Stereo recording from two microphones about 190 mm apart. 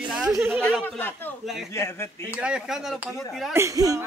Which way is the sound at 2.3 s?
5° right (ahead or behind).